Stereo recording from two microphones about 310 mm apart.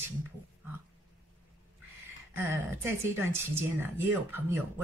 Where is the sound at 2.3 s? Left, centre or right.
Centre.